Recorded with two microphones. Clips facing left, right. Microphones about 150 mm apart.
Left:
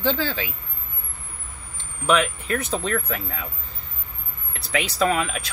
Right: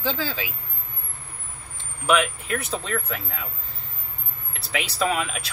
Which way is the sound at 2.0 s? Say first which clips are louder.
Left 1 dB; 5° right (ahead or behind).